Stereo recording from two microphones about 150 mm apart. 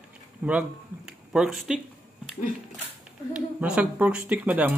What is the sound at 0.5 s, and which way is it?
Speech, 5° right (ahead or behind).